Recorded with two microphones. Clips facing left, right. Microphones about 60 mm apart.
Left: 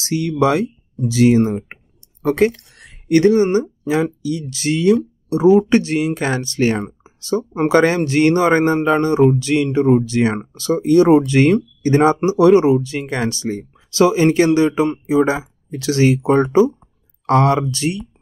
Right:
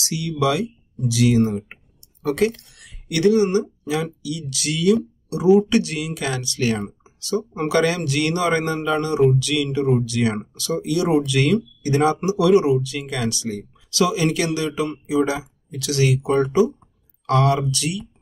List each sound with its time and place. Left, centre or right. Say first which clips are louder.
0.0 s speech: left 5 dB; left